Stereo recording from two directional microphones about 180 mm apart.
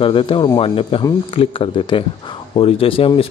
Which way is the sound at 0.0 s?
30° left (ahead or behind).